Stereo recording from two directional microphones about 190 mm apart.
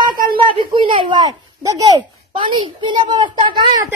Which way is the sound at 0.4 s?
25° right (ahead or behind).